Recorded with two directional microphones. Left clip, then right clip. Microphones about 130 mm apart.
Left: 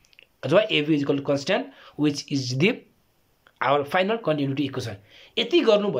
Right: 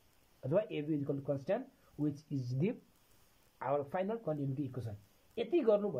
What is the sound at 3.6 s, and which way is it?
Speech, 30° right (ahead or behind).